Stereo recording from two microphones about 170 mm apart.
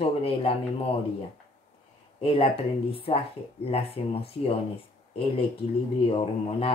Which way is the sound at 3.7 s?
35° left (ahead or behind).